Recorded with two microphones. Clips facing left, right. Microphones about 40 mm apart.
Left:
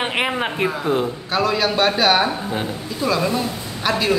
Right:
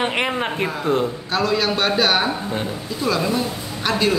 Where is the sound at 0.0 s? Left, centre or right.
Centre.